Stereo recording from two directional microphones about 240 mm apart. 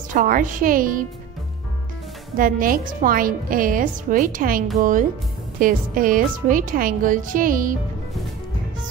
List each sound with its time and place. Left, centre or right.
0.1 s a woman's voice: right
2.3 s a woman's voice: right